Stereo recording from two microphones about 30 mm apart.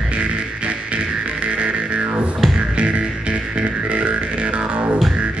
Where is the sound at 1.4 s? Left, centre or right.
Right.